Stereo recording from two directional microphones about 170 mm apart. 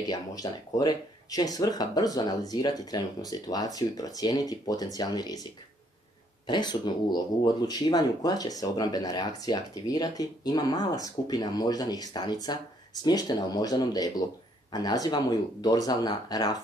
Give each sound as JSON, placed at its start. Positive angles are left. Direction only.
{"t": 0.1, "sound": "speech", "side_deg": 20}
{"t": 6.4, "sound": "speech", "side_deg": 25}